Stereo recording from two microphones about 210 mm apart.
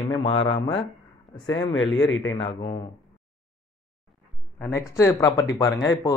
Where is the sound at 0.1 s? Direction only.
20° left (ahead or behind).